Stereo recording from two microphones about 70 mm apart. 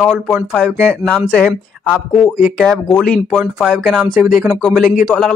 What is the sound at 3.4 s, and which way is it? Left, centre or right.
Speech, centre.